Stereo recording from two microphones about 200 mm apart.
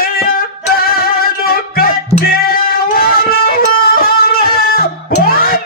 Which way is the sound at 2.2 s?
50° left (ahead or behind).